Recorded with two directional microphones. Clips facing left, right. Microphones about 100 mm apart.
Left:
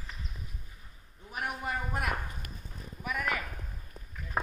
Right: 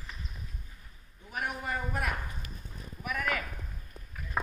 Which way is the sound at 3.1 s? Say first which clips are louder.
Even; 20° left (ahead or behind).